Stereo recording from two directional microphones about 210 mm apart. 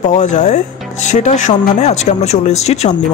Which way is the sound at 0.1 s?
35° left (ahead or behind).